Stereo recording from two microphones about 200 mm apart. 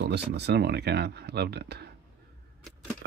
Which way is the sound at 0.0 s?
55° right (ahead or behind).